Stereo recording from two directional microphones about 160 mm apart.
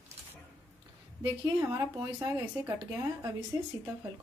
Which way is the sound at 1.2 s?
20° right (ahead or behind).